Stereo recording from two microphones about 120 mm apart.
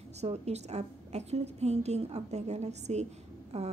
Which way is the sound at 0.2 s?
65° right (ahead or behind).